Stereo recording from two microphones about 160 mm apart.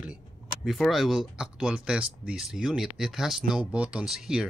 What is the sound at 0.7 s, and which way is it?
Speech, centre (ahead or behind).